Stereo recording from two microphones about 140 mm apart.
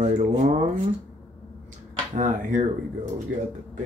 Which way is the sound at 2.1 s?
65° right (ahead or behind).